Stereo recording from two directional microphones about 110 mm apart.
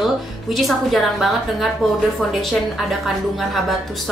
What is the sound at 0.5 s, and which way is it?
A woman's voice, centre (ahead or behind).